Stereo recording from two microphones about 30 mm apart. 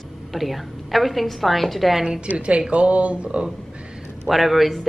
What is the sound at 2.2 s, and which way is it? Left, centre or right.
Speech, right.